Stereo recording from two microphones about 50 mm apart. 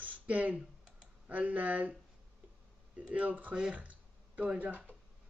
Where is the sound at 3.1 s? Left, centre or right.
Right.